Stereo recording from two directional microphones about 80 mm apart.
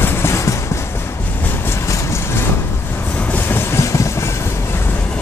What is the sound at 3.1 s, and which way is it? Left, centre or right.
Train, centre.